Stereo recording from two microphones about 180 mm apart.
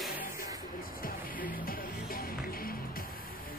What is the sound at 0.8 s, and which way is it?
Music, 50° left (ahead or behind).